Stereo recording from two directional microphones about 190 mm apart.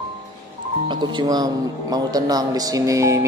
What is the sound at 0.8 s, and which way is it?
Speech, 20° right (ahead or behind).